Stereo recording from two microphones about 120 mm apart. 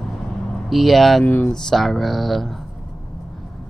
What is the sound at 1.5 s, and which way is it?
A man's voice, 5° left (ahead or behind).